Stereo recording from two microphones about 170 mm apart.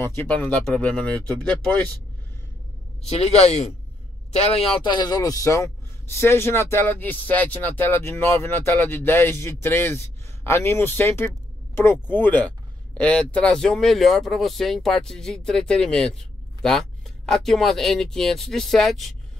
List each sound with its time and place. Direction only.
0.0 s speech: 15° left (ahead or behind)
3.0 s a man's voice: 40° left (ahead or behind)
4.8 s speech: 25° left (ahead or behind); by 19.1 s centre (ahead or behind)